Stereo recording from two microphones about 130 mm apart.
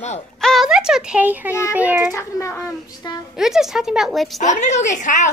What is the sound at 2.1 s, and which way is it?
Speech, 20° left (ahead or behind).